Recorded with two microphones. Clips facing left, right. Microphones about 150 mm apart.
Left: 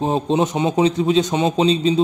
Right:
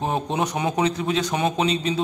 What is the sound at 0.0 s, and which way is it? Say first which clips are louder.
A man's voice: left 6 dB; 25° left (ahead or behind).